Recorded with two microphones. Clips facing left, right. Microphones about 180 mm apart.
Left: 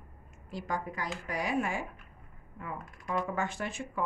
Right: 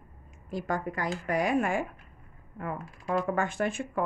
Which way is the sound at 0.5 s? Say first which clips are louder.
Right 4 dB; 50° right (ahead or behind).